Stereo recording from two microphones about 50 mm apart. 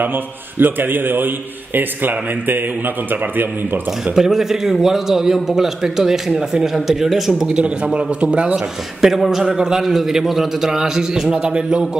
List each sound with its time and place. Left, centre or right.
0.6 s a man's voice: right
4.1 s a man's voice: centre
7.6 s a man's voice: right
9.0 s a man's voice: centre